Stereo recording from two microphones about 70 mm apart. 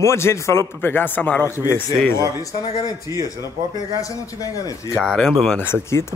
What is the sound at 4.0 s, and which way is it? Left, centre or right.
Speech, left.